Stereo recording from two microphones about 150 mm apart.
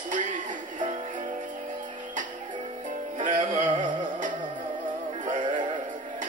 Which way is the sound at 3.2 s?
55° right (ahead or behind).